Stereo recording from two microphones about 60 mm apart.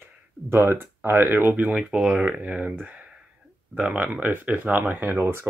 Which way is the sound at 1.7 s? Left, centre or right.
Centre.